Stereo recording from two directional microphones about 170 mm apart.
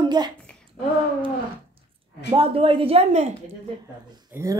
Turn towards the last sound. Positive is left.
turn(degrees=-15)  # may be behind; listen again after turning